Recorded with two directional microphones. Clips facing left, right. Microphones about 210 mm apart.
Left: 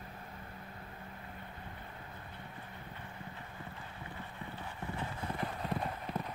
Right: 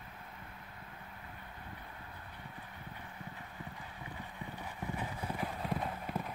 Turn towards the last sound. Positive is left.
turn(degrees=-5)  # may be behind; listen again after turning